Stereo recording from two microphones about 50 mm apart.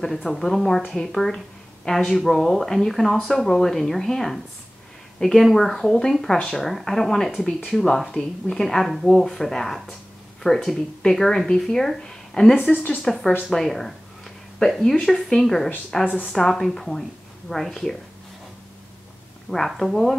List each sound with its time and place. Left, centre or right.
0.0 s a woman's voice: centre
12.6 s speech: left
12.9 s speech: centre
16.1 s speech: left
16.3 s a woman's voice: centre
19.7 s a woman's voice: centre